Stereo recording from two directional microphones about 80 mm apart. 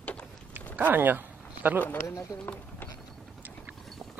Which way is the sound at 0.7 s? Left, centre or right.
Right.